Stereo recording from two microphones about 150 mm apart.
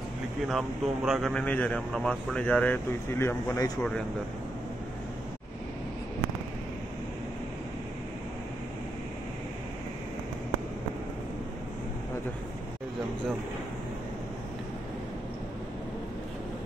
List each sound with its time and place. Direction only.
0.5 s speech: 5° right (ahead or behind); by 3.8 s 25° left (ahead or behind)